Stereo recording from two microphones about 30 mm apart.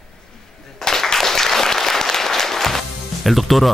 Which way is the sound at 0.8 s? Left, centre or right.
Centre.